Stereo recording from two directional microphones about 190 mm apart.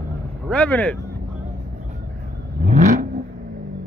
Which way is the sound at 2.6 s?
40° right (ahead or behind).